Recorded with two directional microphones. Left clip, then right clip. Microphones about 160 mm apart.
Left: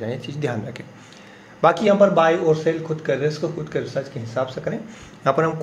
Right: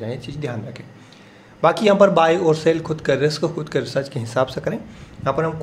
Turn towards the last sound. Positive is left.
turn(degrees=0)  # may be behind; listen again after turning